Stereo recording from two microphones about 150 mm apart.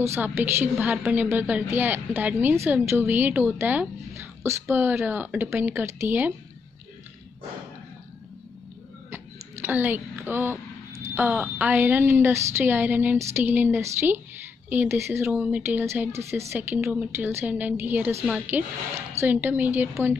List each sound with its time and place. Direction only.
0.0 s a woman's voice: 15° right (ahead or behind)
9.1 s a woman's voice: 15° right (ahead or behind)